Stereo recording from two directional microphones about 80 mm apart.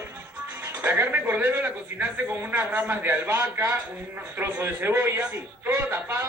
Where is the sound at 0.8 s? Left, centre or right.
Right.